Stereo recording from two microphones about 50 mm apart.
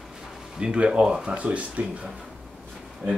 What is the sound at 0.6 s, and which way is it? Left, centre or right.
Speech, right.